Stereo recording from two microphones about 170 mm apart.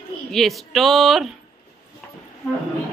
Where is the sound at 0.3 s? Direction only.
Centre (ahead or behind).